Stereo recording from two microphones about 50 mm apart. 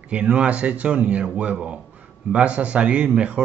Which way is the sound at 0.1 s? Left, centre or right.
Right.